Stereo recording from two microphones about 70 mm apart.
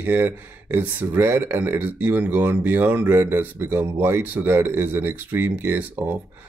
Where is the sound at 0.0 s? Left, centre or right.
Right.